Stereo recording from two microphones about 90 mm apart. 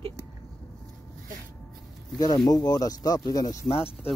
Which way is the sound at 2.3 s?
50° left (ahead or behind).